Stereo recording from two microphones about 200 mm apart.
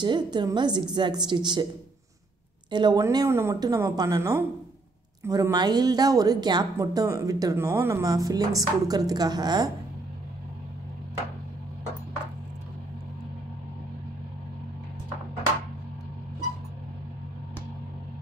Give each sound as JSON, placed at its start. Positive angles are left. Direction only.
{"t": 0.0, "sound": "a woman's voice", "side_deg": -20}
{"t": 2.7, "sound": "a woman's voice", "side_deg": -20}